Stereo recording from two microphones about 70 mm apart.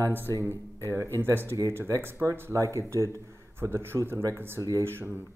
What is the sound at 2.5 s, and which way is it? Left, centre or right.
Speech, right.